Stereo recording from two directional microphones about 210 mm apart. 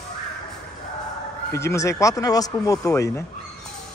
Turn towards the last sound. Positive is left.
turn(degrees=15)  # may be behind; listen again after turning